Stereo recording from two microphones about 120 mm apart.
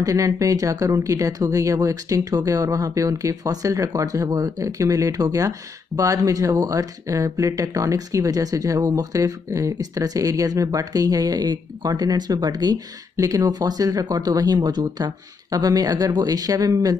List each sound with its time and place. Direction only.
0.0 s speech: 30° right (ahead or behind)